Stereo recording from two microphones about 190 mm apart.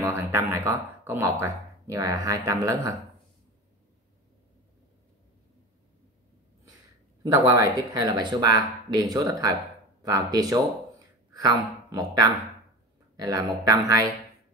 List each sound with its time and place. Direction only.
0.0 s speech: 15° right (ahead or behind)
7.4 s speech: 20° right (ahead or behind)